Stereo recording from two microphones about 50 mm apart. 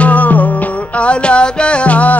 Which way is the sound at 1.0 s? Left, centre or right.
Left.